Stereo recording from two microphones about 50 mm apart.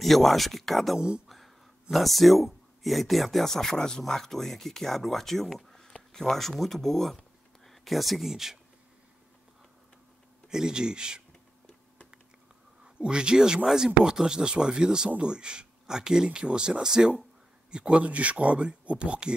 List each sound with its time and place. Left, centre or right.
0.0 s speech: centre
0.9 s speech: centre
1.3 s speech: centre
5.7 s a sound: centre
6.1 s speech: centre
10.5 s speech: centre
12.8 s speech: centre